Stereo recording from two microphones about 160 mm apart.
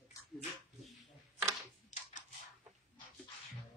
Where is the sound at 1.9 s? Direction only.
50° left (ahead or behind).